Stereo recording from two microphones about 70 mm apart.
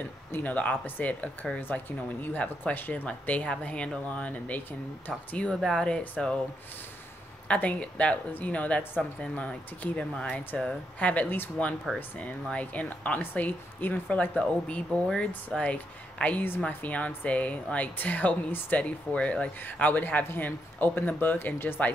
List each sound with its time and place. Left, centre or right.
0.3 s speech: left
5.5 s speech: centre
7.4 s speech: centre
11.2 s speech: left
11.9 s speech: centre
12.4 s speech: centre
19.6 s speech: left